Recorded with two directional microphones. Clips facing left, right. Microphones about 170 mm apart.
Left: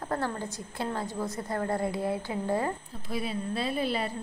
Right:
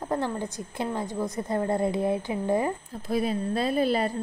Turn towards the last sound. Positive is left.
turn(degrees=-45)  # may be behind; listen again after turning